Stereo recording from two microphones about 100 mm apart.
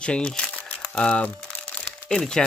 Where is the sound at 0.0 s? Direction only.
10° left (ahead or behind).